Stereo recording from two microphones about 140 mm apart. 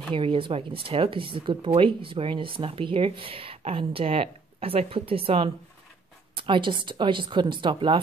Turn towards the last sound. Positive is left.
turn(degrees=-35)  # may be behind; listen again after turning